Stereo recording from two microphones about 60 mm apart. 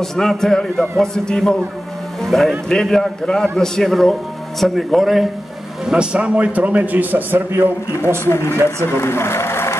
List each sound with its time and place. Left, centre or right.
0.0 s a man's voice: centre
5.9 s a man's voice: centre; by 7.7 s right
8.3 s speech: left